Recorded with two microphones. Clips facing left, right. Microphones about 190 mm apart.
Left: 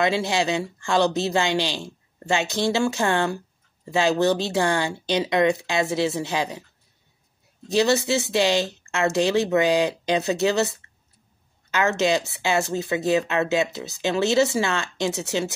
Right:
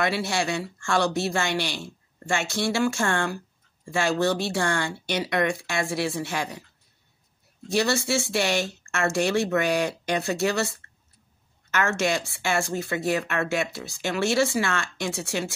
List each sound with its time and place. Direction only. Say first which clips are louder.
0.0 s speech: left 3 dB; 20° left (ahead or behind)
7.6 s speech: left 4 dB; 20° left (ahead or behind)